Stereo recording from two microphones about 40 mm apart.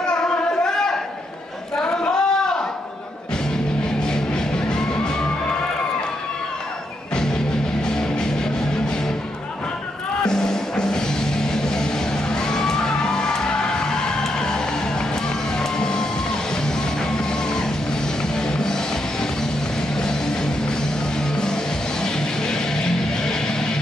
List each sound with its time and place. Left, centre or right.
0.5 s a sound: centre
4.0 s music: centre
10.2 s music: centre
15.6 s music: centre
18.3 s music: centre
22.0 s music: centre